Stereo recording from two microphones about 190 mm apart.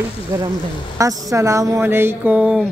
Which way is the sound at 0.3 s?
15° right (ahead or behind).